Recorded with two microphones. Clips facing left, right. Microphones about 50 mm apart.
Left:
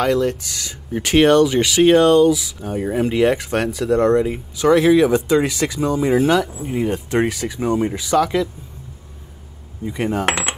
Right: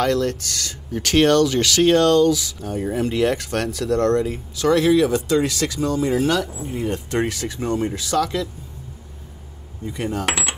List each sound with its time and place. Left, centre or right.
0.0 s speech: centre
9.8 s speech: centre
10.2 s cutlery: left